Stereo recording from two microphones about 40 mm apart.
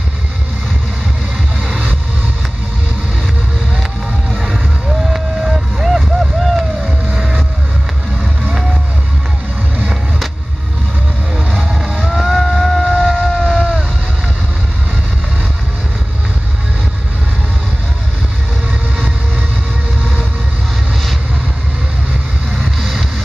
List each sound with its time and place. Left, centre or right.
1.6 s music: right
4.3 s music: centre
4.8 s a sound: centre
5.9 s boat: centre
12.1 s a sound: centre
22.6 s vehicle: centre